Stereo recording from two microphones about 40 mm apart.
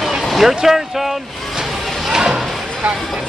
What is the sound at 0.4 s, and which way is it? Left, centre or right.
Speech, centre.